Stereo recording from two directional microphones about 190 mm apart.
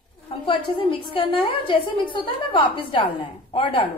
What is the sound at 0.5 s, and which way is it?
A woman's voice, 30° left (ahead or behind).